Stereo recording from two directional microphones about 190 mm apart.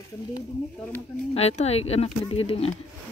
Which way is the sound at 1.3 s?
35° left (ahead or behind).